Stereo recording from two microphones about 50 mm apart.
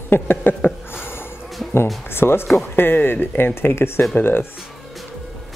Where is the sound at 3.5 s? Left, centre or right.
Left.